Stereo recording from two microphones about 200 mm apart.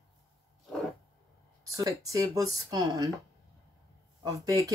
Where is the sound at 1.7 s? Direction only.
15° right (ahead or behind).